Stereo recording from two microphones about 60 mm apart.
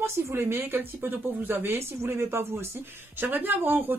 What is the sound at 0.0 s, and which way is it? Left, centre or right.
Speech, right.